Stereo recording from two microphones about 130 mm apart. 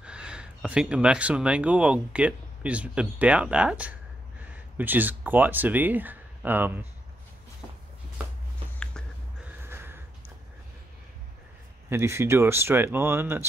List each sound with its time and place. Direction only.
0.0 s speech: 5° right (ahead or behind)
9.4 s snort: 15° right (ahead or behind)
11.9 s speech: 20° right (ahead or behind)